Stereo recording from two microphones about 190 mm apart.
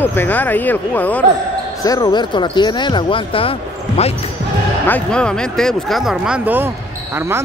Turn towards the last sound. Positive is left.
turn(degrees=-5)  # may be behind; listen again after turning